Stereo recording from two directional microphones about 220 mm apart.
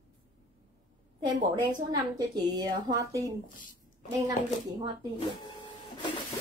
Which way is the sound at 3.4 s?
35° left (ahead or behind).